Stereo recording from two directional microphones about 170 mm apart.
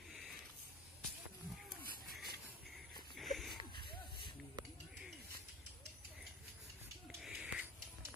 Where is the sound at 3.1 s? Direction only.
Centre (ahead or behind).